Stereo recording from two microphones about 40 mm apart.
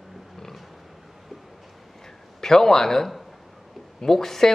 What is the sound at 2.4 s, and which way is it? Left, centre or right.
A man's voice, centre.